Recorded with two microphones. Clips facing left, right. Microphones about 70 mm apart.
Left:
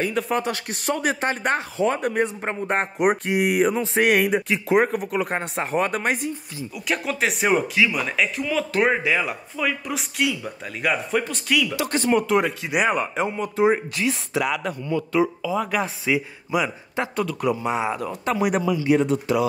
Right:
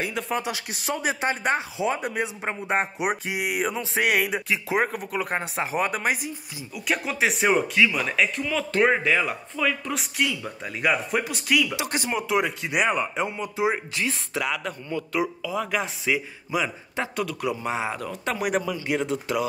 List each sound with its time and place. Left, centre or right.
0.0 s speech: centre
11.7 s speech: right
12.0 s speech: centre
14.5 s a man's voice: left
15.4 s speech: centre
16.1 s a man's voice: centre
16.9 s speech: left
17.4 s a man's voice: centre